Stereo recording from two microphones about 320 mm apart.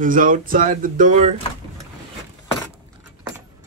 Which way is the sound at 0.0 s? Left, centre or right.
Right.